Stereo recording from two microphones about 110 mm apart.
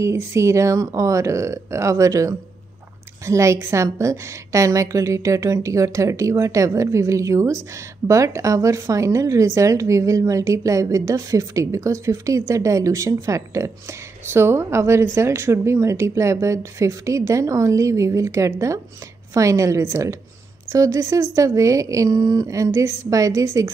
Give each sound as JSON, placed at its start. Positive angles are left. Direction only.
{"t": 0.0, "sound": "a woman's voice", "side_deg": -25}